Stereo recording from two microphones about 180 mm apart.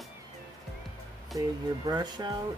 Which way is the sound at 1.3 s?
20° right (ahead or behind).